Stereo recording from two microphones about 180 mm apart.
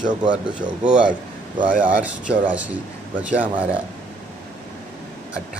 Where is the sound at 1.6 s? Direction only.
50° right (ahead or behind).